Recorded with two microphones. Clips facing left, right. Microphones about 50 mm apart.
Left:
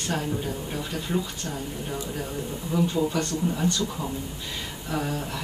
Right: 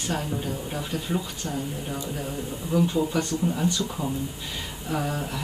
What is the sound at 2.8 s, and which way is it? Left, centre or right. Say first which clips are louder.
Speech: left 2 dB; centre.